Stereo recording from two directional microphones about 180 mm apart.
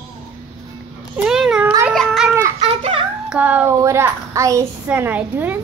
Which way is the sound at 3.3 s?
10° right (ahead or behind).